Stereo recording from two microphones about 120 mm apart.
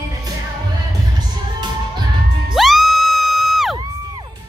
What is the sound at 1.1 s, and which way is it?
Music, 35° right (ahead or behind).